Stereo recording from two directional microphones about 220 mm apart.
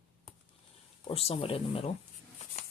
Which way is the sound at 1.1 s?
25° left (ahead or behind).